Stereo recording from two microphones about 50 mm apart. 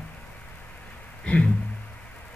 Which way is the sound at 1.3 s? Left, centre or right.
Left.